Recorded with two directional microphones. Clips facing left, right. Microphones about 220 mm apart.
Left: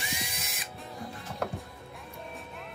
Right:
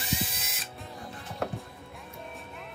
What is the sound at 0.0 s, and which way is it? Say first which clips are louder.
Drill: right 5 dB; centre (ahead or behind).